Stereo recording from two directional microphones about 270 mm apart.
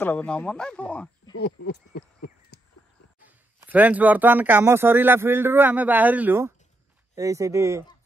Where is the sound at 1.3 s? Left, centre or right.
Left.